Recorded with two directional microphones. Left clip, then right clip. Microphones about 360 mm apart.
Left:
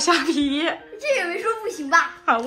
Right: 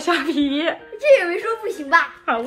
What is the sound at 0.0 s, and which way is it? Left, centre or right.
A woman's voice, centre.